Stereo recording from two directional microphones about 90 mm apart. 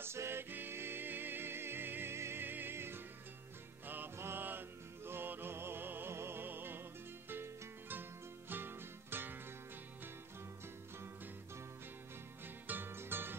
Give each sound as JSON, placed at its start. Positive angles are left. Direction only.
{"t": 0.0, "sound": "music", "side_deg": -30}
{"t": 12.6, "sound": "music", "side_deg": -20}